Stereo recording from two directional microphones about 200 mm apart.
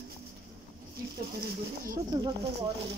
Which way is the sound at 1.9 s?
20° right (ahead or behind).